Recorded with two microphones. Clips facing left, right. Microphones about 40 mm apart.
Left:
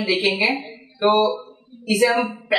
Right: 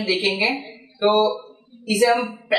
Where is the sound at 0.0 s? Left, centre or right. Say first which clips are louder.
Left 1 dB; centre.